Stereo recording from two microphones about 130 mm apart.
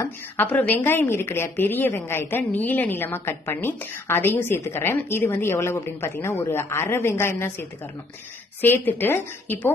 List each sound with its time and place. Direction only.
0.0 s a woman's voice: 15° left (ahead or behind)